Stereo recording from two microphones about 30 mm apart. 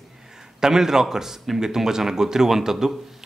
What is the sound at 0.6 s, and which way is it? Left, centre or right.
A man's voice, centre.